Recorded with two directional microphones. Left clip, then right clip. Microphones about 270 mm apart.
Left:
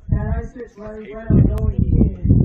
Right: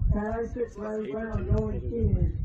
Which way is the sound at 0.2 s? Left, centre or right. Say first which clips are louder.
Right 6 dB; left.